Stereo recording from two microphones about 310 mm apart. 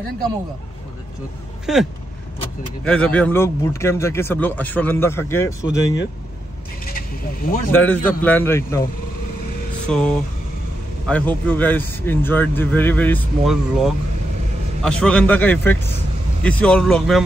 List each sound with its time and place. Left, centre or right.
1.7 s speech: centre
6.8 s a sound: left
7.7 s speech: centre
9.8 s speech: centre